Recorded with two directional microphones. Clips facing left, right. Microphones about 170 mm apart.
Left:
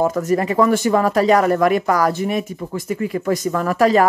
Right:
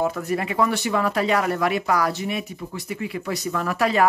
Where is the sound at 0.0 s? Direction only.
45° left (ahead or behind).